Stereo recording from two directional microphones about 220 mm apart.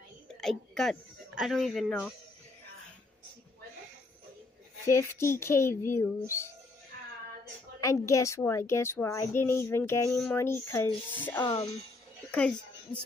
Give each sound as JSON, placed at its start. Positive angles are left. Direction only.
{"t": 0.4, "sound": "speech", "side_deg": 0}
{"t": 4.8, "sound": "a woman's voice", "side_deg": 10}
{"t": 7.8, "sound": "a woman's voice", "side_deg": 15}
{"t": 12.3, "sound": "a sound", "side_deg": 5}